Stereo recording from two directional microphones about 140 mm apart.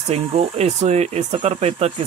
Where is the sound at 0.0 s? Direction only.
45° right (ahead or behind).